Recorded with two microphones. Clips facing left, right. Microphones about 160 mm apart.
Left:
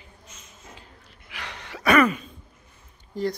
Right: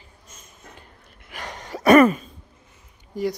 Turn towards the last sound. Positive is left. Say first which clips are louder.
# right 2 dB
turn(degrees=-10)  # may be behind; listen again after turning